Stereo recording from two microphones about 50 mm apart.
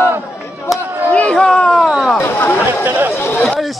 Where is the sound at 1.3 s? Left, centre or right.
Centre.